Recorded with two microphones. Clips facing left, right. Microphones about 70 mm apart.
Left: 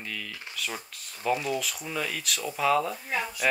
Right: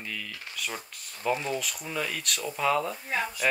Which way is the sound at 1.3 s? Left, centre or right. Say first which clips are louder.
Left 2 dB; right.